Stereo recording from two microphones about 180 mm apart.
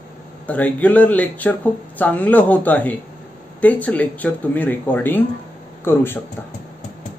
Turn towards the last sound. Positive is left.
turn(degrees=10)  # may be behind; listen again after turning